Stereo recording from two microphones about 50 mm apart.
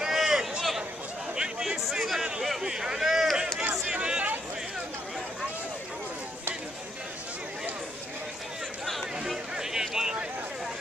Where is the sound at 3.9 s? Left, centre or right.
Centre.